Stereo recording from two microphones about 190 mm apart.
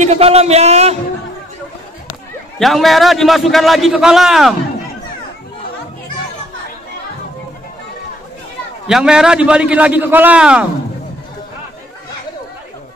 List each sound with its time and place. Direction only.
0.0 s speech: 35° right (ahead or behind)
2.6 s a man's voice: centre (ahead or behind)
8.8 s a man's voice: 5° right (ahead or behind)